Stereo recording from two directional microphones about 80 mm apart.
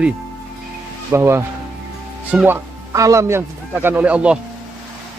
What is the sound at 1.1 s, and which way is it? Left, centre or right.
Speech, right.